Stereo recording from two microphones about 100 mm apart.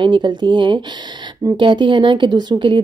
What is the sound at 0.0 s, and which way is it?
A woman's voice, 55° right (ahead or behind).